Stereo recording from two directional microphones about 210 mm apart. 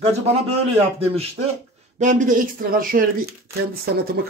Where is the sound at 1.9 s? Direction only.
35° right (ahead or behind).